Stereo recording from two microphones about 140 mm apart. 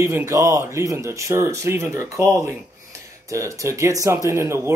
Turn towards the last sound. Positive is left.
turn(degrees=-20)  # may be behind; listen again after turning